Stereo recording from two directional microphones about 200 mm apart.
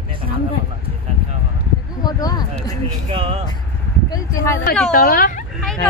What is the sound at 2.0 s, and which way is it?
Speech, 20° left (ahead or behind).